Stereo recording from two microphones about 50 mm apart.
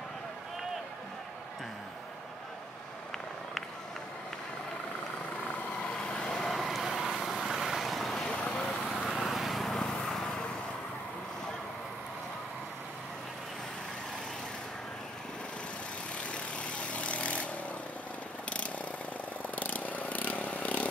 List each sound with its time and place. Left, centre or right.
5.9 s vehicle: centre
6.5 s vehicle: centre
8.2 s vehicle: centre
8.9 s vehicle: centre
16.2 s vehicle: left
19.5 s vehicle: left